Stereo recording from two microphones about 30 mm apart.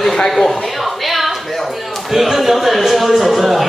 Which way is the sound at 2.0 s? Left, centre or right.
Centre.